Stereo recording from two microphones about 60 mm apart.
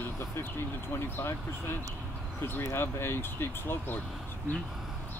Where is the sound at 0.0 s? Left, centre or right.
Left.